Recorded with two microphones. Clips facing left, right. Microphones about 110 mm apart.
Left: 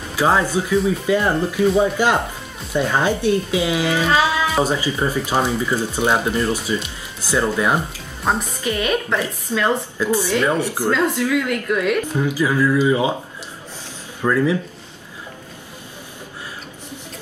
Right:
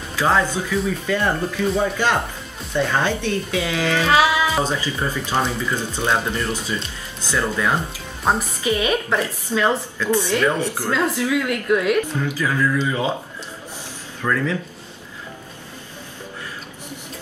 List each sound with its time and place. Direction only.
0.1 s speech: 15° left (ahead or behind)
4.1 s music: 15° right (ahead or behind)
4.6 s speech: 15° left (ahead or behind)
8.3 s a woman's voice: 5° right (ahead or behind)
9.9 s speech: 10° left (ahead or behind)
10.9 s a woman's voice: 5° right (ahead or behind)
12.2 s speech: 15° left (ahead or behind)
14.2 s speech: 15° left (ahead or behind)